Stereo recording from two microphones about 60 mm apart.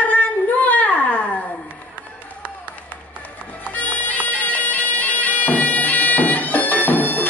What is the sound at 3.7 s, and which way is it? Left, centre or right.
Bagpipes, left.